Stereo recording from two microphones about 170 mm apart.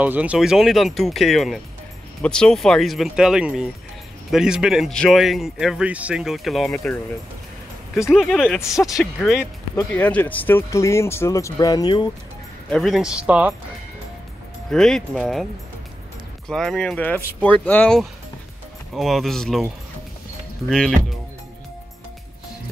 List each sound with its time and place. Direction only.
0.0 s a man's voice: 10° right (ahead or behind); by 7.0 s 10° left (ahead or behind)
8.1 s a man's voice: centre (ahead or behind)
9.8 s speech: 10° left (ahead or behind)
12.6 s a man's voice: 5° left (ahead or behind)
14.7 s a man's voice: 5° left (ahead or behind)
16.4 s a man's voice: 5° left (ahead or behind)